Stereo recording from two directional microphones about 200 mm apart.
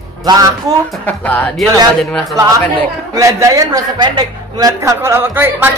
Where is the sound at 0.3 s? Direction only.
20° right (ahead or behind).